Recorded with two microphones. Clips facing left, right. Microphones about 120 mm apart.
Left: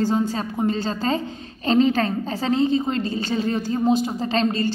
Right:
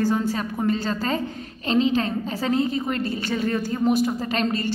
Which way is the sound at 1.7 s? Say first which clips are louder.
Left 3 dB; 40° left (ahead or behind).